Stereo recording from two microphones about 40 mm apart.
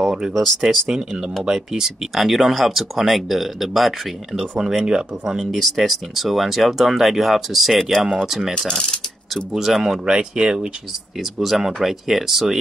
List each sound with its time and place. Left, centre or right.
0.0 s a sound: centre
0.6 s speech: centre
5.4 s speech: centre
8.6 s speech: left
9.3 s speech: centre
10.0 s speech: right
11.1 s speech: centre